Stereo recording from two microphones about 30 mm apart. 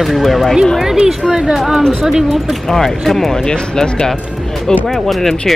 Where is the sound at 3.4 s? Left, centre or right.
Left.